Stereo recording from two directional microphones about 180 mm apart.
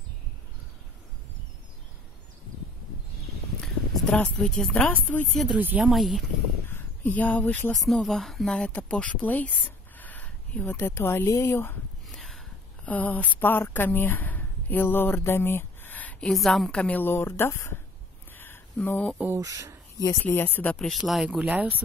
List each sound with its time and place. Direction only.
3.6 s speech: 5° left (ahead or behind)
6.7 s speech: 10° left (ahead or behind)
12.1 s a woman's voice: centre (ahead or behind)
18.3 s a sound: 10° left (ahead or behind)
19.1 s speech: 15° right (ahead or behind)
20.0 s speech: 15° left (ahead or behind); by 21.8 s 10° right (ahead or behind)